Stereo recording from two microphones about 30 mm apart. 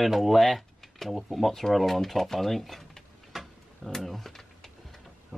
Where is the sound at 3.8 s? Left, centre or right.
Centre.